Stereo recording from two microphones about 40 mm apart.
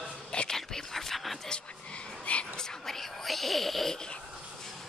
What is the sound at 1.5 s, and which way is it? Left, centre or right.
Whispering, left.